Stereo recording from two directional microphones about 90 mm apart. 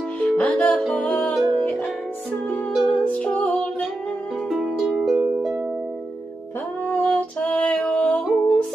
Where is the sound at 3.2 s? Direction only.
10° left (ahead or behind).